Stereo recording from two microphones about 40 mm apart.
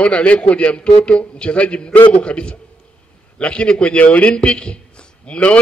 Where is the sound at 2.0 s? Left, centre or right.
Left.